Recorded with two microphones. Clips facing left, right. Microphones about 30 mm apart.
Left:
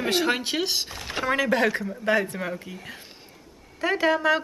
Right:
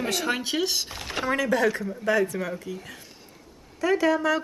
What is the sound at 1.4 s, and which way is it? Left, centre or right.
Speech, left.